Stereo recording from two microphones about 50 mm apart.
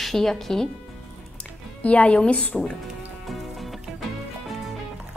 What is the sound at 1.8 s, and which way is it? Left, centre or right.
Speech, left.